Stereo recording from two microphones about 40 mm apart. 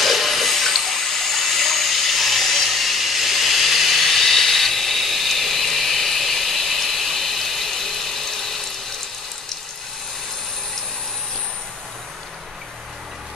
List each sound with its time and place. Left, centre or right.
0.0 s water: centre